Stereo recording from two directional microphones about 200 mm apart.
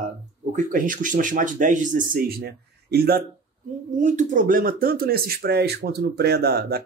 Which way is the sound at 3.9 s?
40° right (ahead or behind).